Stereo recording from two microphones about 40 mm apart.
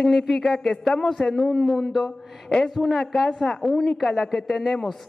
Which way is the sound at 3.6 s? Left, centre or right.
Centre.